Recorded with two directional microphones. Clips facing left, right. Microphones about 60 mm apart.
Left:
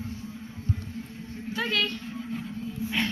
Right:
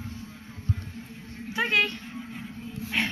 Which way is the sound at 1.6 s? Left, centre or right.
Right.